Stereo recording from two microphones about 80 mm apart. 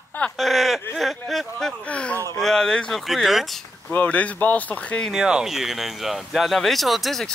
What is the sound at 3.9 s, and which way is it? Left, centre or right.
Speech, centre.